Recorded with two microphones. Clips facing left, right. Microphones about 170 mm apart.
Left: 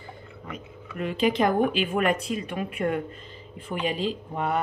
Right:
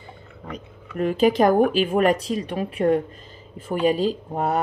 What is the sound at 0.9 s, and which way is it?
Speech, 40° right (ahead or behind).